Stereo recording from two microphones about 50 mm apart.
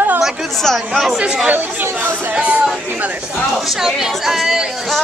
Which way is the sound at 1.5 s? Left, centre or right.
Right.